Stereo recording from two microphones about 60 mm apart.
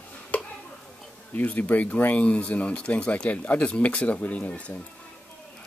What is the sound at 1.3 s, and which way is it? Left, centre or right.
Speech, left.